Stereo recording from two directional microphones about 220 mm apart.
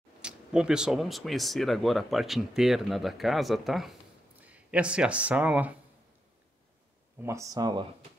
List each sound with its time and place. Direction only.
0.2 s speech: 5° right (ahead or behind)
7.2 s speech: 15° right (ahead or behind)